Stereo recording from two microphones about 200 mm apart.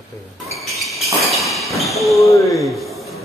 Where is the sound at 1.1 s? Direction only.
Centre (ahead or behind).